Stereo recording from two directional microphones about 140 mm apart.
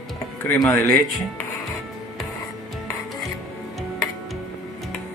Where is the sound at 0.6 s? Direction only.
15° left (ahead or behind).